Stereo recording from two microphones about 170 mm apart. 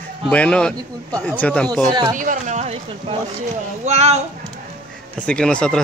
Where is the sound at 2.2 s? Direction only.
45° right (ahead or behind).